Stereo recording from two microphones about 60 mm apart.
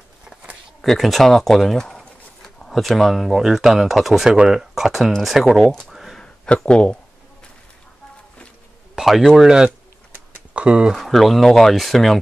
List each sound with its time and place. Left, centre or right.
0.8 s speech: centre
5.7 s speech: centre
6.1 s a sound: centre
8.9 s speech: centre
10.5 s speech: centre
10.9 s speech: centre